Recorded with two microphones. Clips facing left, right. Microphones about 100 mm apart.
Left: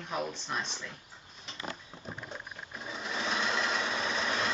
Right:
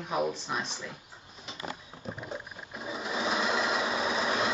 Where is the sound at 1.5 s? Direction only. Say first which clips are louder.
Right 2 dB; 5° right (ahead or behind).